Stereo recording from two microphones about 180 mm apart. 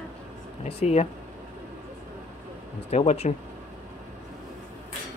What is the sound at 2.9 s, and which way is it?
Speech, 35° left (ahead or behind).